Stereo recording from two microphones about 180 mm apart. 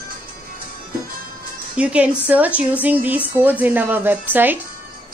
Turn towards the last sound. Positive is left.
turn(degrees=-10)  # may be behind; listen again after turning